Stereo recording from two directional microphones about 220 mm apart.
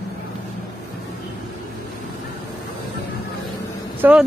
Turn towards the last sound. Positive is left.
turn(degrees=-10)  # may be behind; listen again after turning